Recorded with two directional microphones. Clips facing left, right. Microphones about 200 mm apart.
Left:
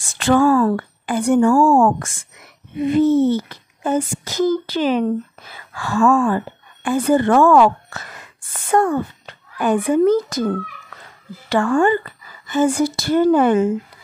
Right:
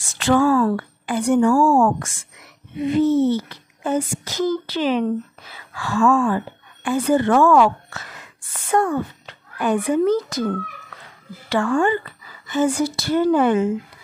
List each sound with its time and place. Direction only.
0.2 s a woman's voice: 50° left (ahead or behind)
11.4 s a woman's voice: 50° left (ahead or behind)